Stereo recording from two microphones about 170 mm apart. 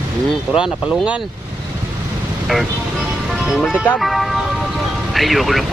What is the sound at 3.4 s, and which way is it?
Speech, centre (ahead or behind).